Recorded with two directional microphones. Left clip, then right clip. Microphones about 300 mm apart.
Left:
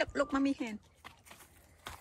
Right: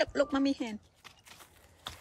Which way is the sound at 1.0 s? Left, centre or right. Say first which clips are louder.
Even; centre.